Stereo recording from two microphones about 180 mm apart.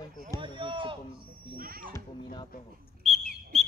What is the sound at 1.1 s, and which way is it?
Speech, 55° right (ahead or behind).